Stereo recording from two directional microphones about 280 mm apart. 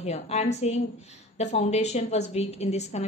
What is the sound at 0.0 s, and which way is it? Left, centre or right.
A woman's voice, left.